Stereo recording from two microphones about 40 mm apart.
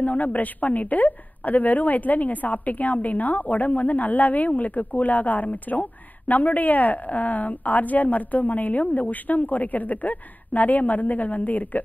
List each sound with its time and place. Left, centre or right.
0.0 s a woman's voice: left